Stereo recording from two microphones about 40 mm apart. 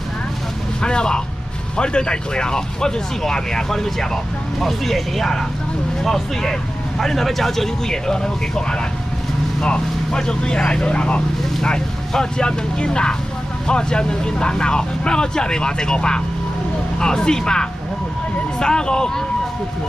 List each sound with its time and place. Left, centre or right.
0.8 s speech: left
4.6 s speech: centre